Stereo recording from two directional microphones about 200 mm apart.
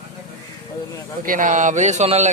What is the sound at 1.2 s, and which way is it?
Speech, 45° right (ahead or behind).